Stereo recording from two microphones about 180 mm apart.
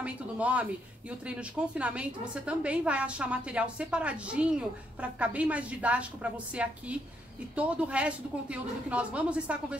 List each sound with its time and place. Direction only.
0.0 s a woman's voice: 5° right (ahead or behind)